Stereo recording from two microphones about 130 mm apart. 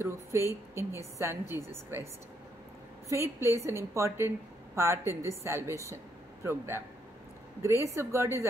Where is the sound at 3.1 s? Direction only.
20° right (ahead or behind).